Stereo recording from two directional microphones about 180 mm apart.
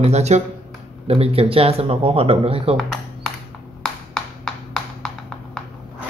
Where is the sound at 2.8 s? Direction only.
Centre (ahead or behind).